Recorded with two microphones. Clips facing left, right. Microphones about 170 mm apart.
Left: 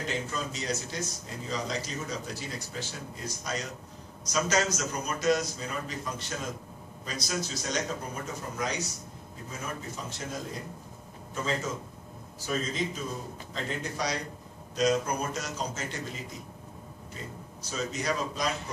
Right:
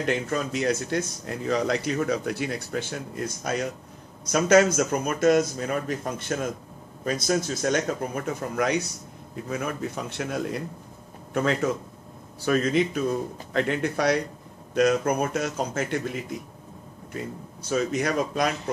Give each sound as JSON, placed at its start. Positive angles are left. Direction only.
{"t": 0.0, "sound": "speech", "side_deg": -60}
{"t": 17.6, "sound": "speech", "side_deg": -60}